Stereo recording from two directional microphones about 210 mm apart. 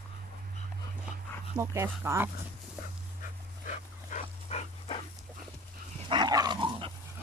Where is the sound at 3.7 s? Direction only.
35° left (ahead or behind).